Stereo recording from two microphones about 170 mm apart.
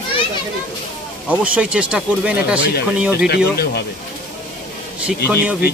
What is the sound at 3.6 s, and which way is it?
Speech, 70° left (ahead or behind).